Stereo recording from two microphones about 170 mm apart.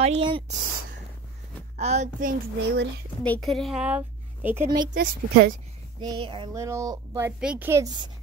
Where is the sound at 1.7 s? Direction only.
40° right (ahead or behind).